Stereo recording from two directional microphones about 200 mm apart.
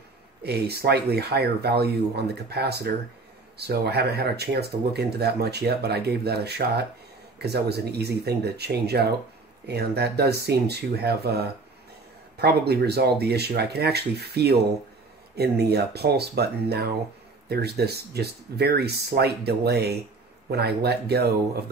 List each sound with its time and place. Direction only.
0.4 s speech: 55° right (ahead or behind)